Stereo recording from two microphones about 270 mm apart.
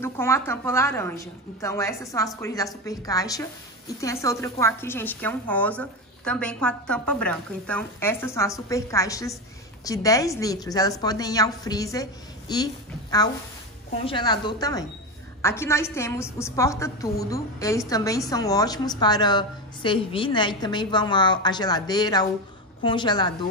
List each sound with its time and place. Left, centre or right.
0.0 s a woman's voice: centre
14.0 s a woman's voice: centre